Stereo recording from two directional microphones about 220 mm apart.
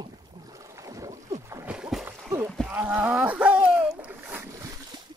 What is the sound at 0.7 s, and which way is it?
Boat, 15° right (ahead or behind).